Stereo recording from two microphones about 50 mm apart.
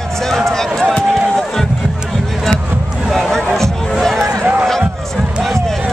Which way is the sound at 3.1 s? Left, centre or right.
Centre.